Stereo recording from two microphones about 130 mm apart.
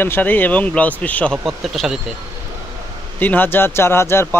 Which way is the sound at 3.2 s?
15° left (ahead or behind).